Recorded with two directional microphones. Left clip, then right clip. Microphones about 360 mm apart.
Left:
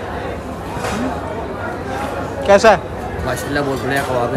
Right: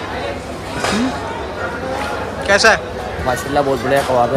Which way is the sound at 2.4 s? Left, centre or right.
Centre.